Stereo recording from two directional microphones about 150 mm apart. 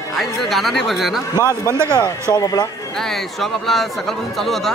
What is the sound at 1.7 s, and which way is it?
Speech, 15° right (ahead or behind).